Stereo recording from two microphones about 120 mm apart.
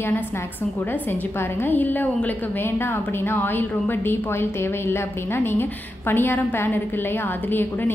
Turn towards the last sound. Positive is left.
turn(degrees=20)  # may be behind; listen again after turning